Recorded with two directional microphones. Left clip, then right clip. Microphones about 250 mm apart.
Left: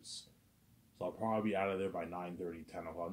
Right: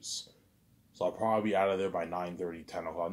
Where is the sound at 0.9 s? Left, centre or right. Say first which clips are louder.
Right 8 dB; centre.